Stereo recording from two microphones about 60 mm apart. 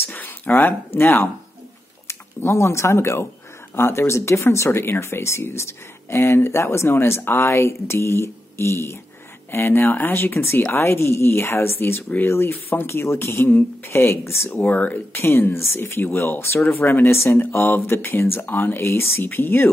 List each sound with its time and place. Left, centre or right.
0.0 s a sound: left
0.6 s speech: left
2.0 s speech: left
14.5 s speech: left
15.1 s speech: left